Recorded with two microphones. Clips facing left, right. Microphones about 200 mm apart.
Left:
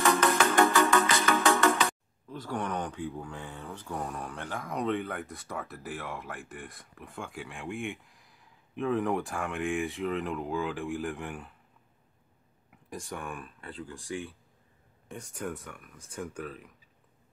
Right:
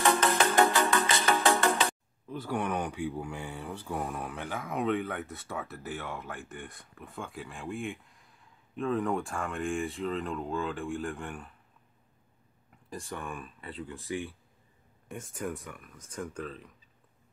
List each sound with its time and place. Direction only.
0.0 s music: 30° right (ahead or behind)
2.2 s speech: 5° right (ahead or behind)
12.9 s speech: centre (ahead or behind)